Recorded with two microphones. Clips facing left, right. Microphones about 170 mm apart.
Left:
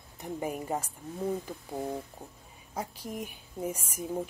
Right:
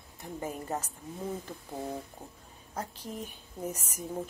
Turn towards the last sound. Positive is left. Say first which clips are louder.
# left 3 dB
turn(degrees=10)  # may be behind; listen again after turning